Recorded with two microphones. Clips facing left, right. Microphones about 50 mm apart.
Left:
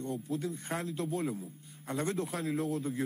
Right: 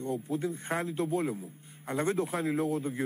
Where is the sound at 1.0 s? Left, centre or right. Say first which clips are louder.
Right 3 dB; centre.